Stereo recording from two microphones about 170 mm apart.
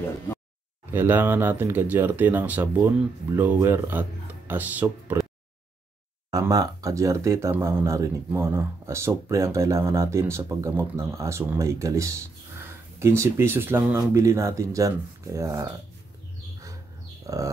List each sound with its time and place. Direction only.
0.9 s speech: 10° right (ahead or behind)
6.3 s speech: 20° right (ahead or behind)
17.3 s a sound: 20° right (ahead or behind)